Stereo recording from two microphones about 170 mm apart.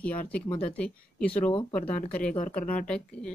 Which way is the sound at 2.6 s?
55° left (ahead or behind).